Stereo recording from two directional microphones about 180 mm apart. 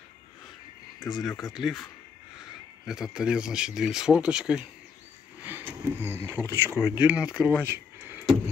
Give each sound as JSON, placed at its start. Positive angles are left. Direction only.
{"t": 1.2, "sound": "speech", "side_deg": 20}
{"t": 1.5, "sound": "speech", "side_deg": 0}
{"t": 2.9, "sound": "speech", "side_deg": -5}
{"t": 7.6, "sound": "a sound", "side_deg": -15}